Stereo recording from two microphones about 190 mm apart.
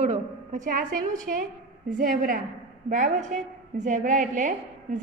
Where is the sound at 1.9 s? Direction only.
45° right (ahead or behind).